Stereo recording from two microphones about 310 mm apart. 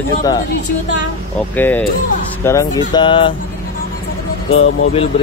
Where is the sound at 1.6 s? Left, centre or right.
Centre.